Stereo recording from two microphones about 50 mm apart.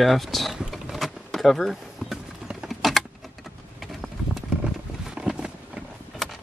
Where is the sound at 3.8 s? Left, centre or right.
Centre.